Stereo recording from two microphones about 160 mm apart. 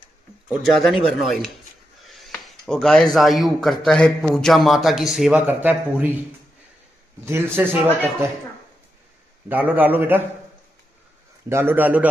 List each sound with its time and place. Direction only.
0.5 s speech: centre (ahead or behind)
2.0 s a sound: centre (ahead or behind)
2.3 s a man's voice: 5° left (ahead or behind)
7.2 s a man's voice: 15° right (ahead or behind)
9.5 s a man's voice: 10° right (ahead or behind)
11.4 s a man's voice: 15° right (ahead or behind)